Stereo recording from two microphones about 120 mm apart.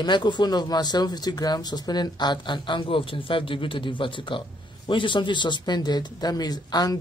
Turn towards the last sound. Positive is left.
turn(degrees=35)  # may be behind; listen again after turning